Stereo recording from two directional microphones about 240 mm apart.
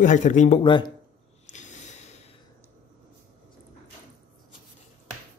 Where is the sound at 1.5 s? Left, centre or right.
Left.